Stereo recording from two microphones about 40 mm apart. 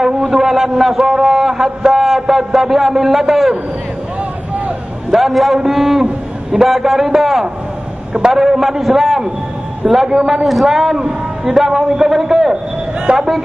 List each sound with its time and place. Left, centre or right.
0.0 s a man's voice: centre
5.1 s a man's voice: centre
9.8 s a man's voice: centre
10.2 s a man's voice: centre
11.0 s a man's voice: right
11.5 s a man's voice: centre
13.1 s speech: right